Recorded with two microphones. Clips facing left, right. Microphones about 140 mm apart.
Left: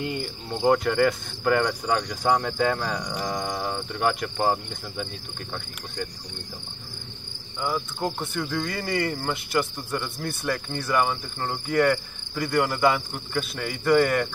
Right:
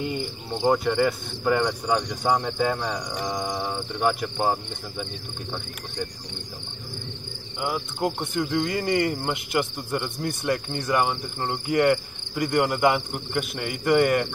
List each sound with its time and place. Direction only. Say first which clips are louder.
0.0 s cricket: right 1 dB; centre (ahead or behind)
8.2 s insect: right 3 dB; 20° right (ahead or behind)
9.2 s cricket: even; 20° right (ahead or behind)
10.2 s insect: right 3 dB; 20° right (ahead or behind)